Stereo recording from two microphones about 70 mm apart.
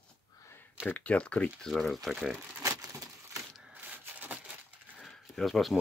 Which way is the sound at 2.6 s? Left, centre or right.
Right.